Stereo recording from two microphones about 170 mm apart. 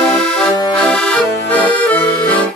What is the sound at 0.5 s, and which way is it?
Accordion, 25° left (ahead or behind).